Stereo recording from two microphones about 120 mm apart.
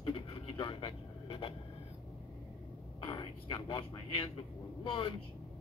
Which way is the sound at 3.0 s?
45° left (ahead or behind).